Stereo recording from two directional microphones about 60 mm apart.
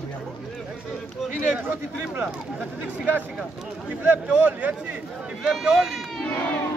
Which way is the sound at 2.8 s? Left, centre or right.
Right.